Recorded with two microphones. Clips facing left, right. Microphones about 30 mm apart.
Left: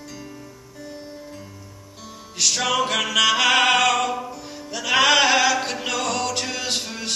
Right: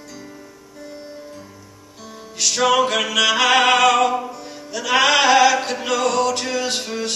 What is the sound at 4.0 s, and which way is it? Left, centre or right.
Music, right.